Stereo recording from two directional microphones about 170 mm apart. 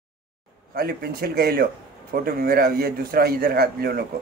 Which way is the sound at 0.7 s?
65° right (ahead or behind).